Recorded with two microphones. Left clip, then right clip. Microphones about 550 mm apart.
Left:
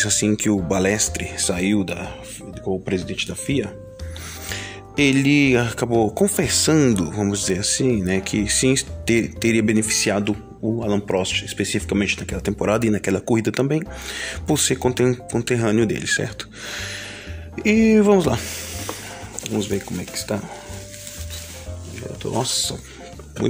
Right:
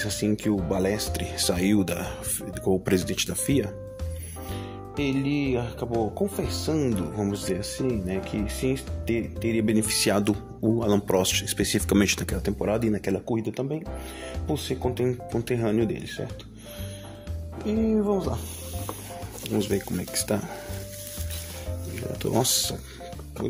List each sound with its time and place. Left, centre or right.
0.0 s speech: right
4.9 s speech: right
16.7 s music: centre
17.6 s speech: centre
17.9 s speech: right
19.4 s speech: right
22.2 s speech: right